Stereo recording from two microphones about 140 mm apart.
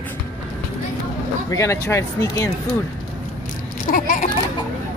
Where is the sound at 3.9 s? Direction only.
80° left.